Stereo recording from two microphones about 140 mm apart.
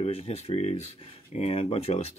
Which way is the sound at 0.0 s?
45° left (ahead or behind).